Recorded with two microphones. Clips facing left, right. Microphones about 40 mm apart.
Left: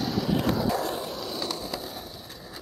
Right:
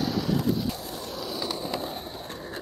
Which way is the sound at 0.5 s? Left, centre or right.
Left.